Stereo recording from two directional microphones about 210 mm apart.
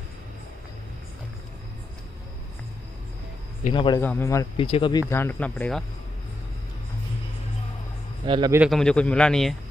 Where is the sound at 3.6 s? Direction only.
25° left (ahead or behind).